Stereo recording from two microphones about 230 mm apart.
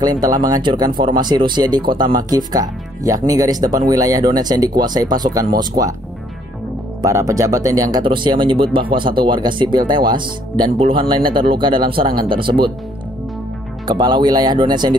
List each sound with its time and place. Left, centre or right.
0.0 s speech: centre
7.0 s speech: centre
13.8 s speech: centre